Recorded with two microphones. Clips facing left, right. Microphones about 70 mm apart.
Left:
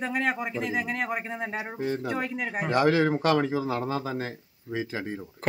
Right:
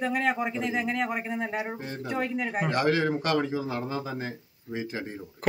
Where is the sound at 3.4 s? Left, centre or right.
Left.